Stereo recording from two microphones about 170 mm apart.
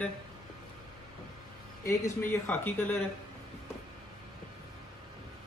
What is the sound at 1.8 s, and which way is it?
A man's voice, 15° left (ahead or behind).